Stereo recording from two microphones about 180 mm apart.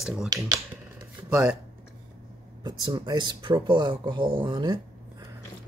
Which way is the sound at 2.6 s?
25° right (ahead or behind).